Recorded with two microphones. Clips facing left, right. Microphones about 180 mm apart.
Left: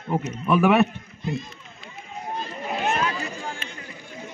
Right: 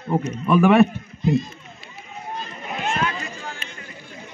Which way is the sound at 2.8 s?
15° left (ahead or behind).